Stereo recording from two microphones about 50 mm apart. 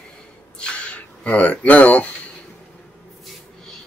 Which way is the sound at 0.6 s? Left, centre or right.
Centre.